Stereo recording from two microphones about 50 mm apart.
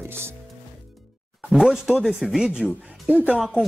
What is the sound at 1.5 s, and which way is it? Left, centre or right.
Speech, centre.